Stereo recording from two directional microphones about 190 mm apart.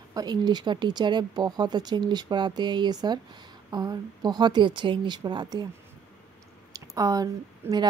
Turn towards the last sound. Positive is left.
turn(degrees=-20)  # may be behind; listen again after turning